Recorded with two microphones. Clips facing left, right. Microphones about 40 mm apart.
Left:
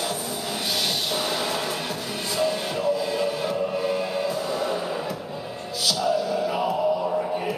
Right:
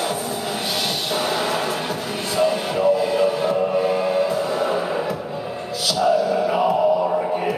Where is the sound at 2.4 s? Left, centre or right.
Centre.